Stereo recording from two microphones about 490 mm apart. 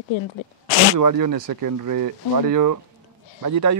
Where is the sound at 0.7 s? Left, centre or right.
Left.